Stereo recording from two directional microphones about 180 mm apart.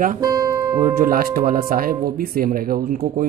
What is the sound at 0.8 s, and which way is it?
Music, 55° right (ahead or behind).